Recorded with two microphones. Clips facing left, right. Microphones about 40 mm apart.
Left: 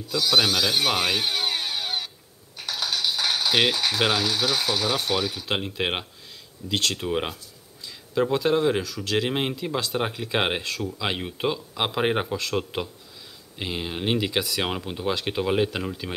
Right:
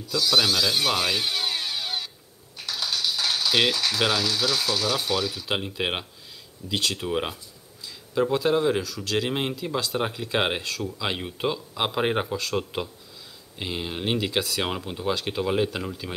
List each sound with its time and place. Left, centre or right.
0.1 s speech: left
5.5 s speech: centre